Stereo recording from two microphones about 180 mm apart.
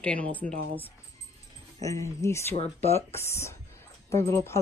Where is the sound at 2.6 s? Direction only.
35° left (ahead or behind).